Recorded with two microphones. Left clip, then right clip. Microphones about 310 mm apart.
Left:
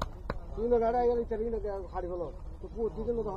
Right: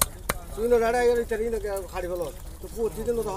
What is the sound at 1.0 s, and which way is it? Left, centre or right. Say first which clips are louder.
Speech: right 6 dB; right.